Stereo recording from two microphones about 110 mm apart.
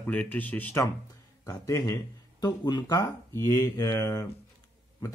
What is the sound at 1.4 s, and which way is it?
Speech, 30° left (ahead or behind).